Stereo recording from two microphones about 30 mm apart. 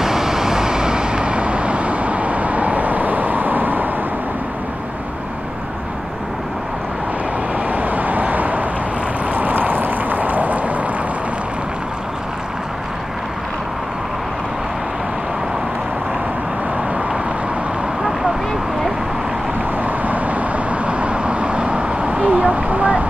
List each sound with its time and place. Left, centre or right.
0.0 s vehicle: centre; by 3.9 s right
7.6 s vehicle: right
9.3 s a sound: right
19.8 s vehicle: right